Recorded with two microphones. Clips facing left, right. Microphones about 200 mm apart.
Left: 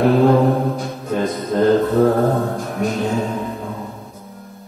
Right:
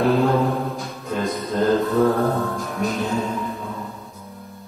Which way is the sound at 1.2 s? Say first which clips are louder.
Left 4 dB; 50° left (ahead or behind).